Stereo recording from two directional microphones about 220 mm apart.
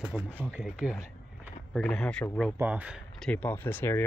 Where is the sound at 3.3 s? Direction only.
5° left (ahead or behind).